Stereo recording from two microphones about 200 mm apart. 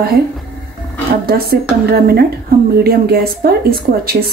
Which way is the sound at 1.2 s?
50° right (ahead or behind).